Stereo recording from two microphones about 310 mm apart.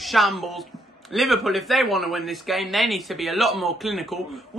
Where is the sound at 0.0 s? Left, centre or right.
Centre.